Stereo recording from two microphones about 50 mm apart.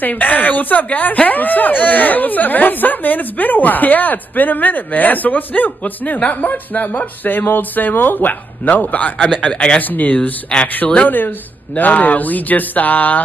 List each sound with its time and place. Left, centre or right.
0.0 s speech: left
9.4 s speech: left
9.8 s speech: left